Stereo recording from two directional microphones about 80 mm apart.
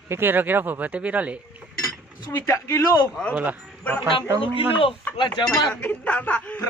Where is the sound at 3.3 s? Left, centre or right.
Centre.